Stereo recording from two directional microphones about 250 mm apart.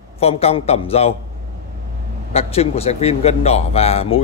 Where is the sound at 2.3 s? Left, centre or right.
Left.